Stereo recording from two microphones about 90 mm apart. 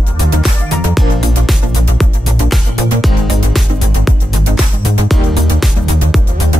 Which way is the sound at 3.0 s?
Centre (ahead or behind).